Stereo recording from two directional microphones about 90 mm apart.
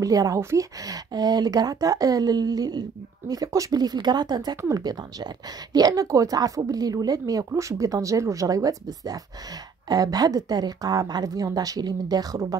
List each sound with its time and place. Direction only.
0.0 s speech: 40° right (ahead or behind)